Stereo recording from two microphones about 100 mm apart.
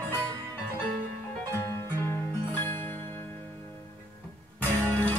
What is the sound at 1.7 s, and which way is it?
Music, 25° left (ahead or behind).